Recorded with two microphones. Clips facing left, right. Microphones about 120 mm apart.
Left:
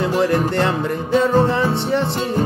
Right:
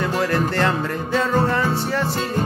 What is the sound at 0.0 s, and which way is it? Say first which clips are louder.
Music: left 3 dB; 25° left (ahead or behind).